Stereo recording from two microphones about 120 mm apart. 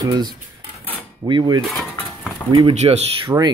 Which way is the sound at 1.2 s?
40° right (ahead or behind).